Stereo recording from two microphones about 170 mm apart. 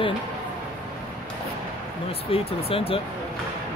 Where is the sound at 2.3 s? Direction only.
35° left (ahead or behind).